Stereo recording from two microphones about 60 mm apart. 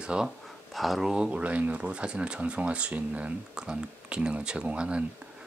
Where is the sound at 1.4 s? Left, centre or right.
Right.